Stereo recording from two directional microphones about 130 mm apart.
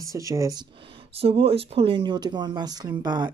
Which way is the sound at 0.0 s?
25° right (ahead or behind).